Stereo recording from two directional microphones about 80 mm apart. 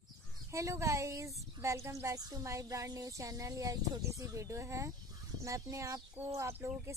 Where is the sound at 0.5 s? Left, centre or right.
Right.